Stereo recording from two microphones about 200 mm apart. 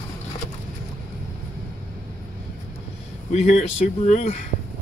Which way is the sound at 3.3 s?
35° left (ahead or behind).